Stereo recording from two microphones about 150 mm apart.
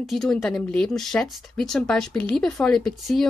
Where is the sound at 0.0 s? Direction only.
Centre (ahead or behind).